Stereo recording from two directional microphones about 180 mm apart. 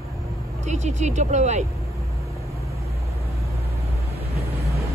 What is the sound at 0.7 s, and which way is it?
Speech, 40° right (ahead or behind).